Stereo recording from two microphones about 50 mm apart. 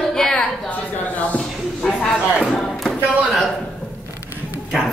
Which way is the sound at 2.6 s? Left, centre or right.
Centre.